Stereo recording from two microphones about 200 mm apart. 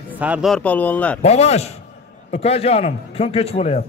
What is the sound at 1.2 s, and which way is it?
A man's voice, 30° left (ahead or behind).